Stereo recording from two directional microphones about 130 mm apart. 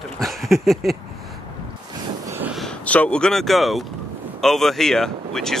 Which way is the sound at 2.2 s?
20° right (ahead or behind).